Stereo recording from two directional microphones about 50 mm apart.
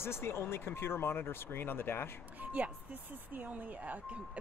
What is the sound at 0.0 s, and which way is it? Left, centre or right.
Speech, left.